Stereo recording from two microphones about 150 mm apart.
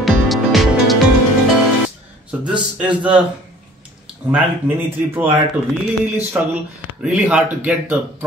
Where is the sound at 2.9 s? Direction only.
10° right (ahead or behind).